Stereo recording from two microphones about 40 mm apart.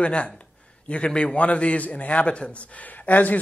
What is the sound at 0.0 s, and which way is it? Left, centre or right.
A man's voice, left.